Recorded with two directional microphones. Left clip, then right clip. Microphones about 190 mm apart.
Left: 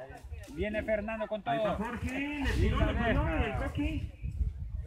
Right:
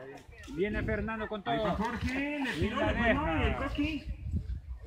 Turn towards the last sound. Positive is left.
turn(degrees=-50)  # may be behind; listen again after turning